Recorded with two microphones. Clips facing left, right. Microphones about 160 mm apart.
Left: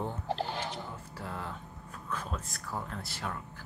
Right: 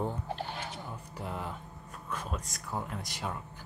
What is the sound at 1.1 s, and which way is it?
Speech, 15° right (ahead or behind).